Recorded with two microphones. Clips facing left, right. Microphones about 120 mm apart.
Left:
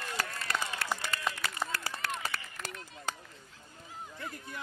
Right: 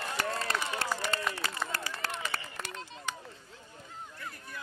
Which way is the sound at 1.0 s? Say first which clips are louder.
Right 5 dB; 30° right (ahead or behind).